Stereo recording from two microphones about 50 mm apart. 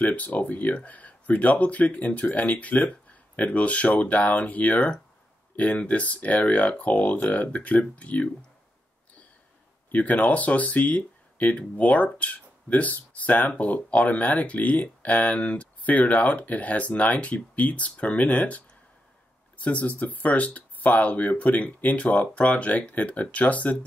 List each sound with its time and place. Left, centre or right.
0.0 s speech: left
9.8 s speech: left